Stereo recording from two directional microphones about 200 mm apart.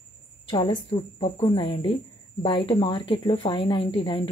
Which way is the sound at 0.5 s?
25° left (ahead or behind).